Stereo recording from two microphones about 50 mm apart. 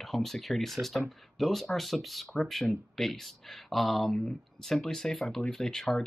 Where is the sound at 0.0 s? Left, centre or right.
Centre.